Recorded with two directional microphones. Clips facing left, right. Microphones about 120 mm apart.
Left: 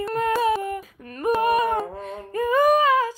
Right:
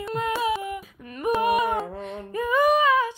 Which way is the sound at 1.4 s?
40° left (ahead or behind).